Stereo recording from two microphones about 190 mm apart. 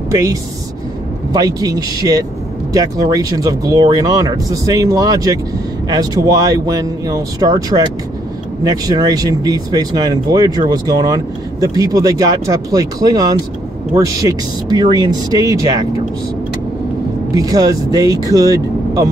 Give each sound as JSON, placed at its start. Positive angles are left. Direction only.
{"t": 0.1, "sound": "speech", "side_deg": -20}
{"t": 17.3, "sound": "speech", "side_deg": -20}